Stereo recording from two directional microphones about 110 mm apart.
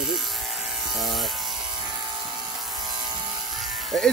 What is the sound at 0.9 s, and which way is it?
Electric shaver, centre (ahead or behind).